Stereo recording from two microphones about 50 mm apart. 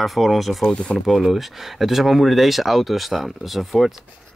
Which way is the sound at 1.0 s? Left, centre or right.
Centre.